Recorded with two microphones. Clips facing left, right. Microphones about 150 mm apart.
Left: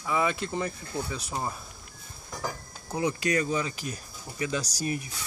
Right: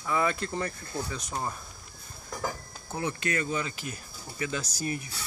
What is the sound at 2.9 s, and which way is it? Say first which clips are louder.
Speech: left 4 dB; 15° left (ahead or behind).